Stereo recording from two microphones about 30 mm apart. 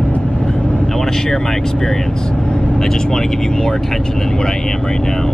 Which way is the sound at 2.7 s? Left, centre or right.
Centre.